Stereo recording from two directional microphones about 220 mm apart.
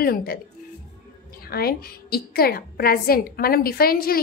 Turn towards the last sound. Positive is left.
turn(degrees=45)  # may be behind; listen again after turning